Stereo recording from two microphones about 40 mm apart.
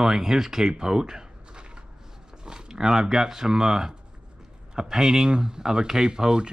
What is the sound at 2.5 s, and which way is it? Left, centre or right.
Speech, centre.